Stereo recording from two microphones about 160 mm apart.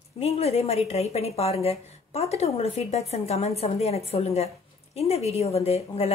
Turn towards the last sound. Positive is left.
turn(degrees=40)  # may be behind; listen again after turning